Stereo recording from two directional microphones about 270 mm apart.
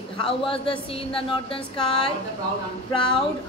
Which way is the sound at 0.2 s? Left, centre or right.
Centre.